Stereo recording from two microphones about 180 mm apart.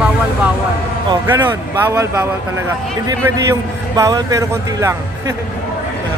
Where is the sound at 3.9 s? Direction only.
20° right (ahead or behind).